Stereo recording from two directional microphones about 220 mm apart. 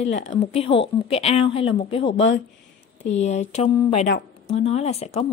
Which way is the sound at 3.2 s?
30° left (ahead or behind).